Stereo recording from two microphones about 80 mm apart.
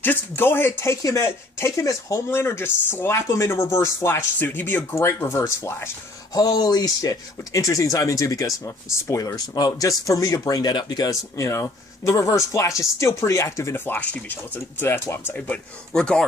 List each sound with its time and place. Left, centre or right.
0.0 s speech: left
2.3 s speech: left
6.3 s speech: left
9.2 s speech: left
11.3 s speech: left; by 16.3 s centre